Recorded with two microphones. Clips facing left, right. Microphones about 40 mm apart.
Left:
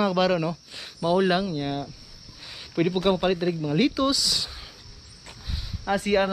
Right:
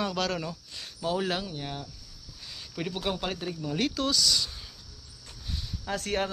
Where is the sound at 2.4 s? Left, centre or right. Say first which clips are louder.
Left 10 dB; left.